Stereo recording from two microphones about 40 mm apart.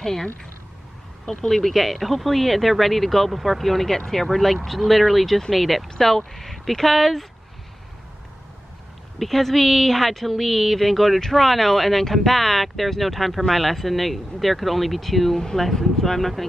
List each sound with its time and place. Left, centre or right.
0.0 s speech: centre
1.5 s a woman's voice: centre
5.9 s a woman's voice: centre
9.2 s a woman's voice: centre